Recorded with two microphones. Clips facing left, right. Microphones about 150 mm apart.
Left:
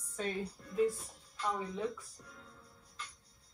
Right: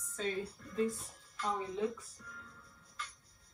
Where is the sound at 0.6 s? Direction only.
25° left (ahead or behind).